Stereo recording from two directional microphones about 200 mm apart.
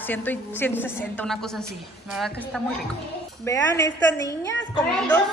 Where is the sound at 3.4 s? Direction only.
15° left (ahead or behind).